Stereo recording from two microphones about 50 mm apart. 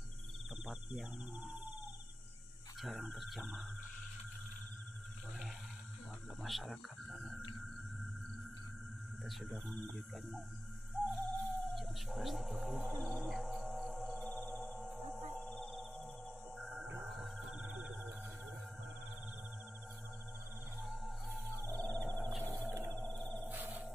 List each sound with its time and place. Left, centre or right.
2.8 s speech: centre
6.4 s speech: centre
7.1 s whale vocalization: centre
9.2 s speech: centre
11.0 s music: centre
11.5 s speech: centre
13.6 s music: centre
17.6 s music: centre
20.8 s music: centre
21.5 s music: left
21.9 s music: centre
22.4 s music: left
23.0 s music: centre
23.4 s music: right